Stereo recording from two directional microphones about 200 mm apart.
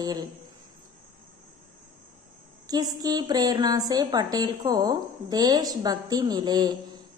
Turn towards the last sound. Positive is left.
turn(degrees=-20)  # may be behind; listen again after turning